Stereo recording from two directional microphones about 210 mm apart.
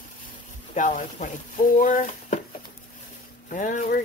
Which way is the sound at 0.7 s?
35° left (ahead or behind).